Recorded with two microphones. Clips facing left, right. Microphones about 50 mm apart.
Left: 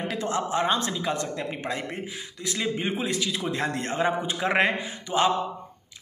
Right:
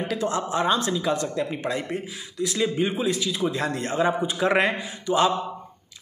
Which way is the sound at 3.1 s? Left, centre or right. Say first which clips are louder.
Right 3 dB; left.